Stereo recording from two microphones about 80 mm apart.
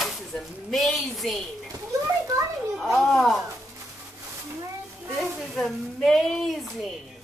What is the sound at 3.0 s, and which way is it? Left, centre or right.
Speech, centre.